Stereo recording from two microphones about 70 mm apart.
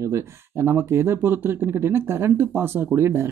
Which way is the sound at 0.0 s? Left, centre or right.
Right.